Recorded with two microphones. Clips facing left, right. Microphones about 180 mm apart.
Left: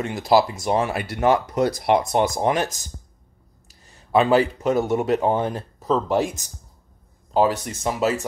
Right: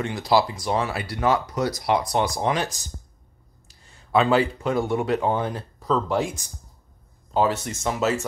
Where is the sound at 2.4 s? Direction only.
45° left (ahead or behind).